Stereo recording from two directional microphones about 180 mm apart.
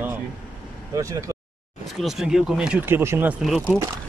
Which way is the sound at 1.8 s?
Centre (ahead or behind).